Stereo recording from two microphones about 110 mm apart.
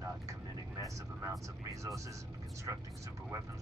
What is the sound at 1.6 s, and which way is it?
Vehicle, 30° right (ahead or behind).